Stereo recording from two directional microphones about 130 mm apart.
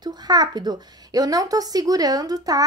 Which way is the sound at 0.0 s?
30° right (ahead or behind).